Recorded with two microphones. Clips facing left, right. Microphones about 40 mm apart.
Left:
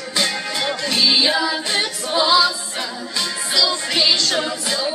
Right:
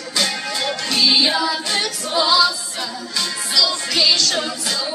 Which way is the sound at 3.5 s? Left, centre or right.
Left.